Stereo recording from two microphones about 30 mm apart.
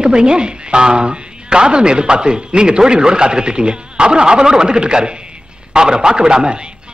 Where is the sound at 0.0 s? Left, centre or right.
Right.